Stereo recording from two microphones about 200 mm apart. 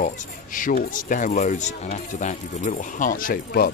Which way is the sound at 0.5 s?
45° left (ahead or behind).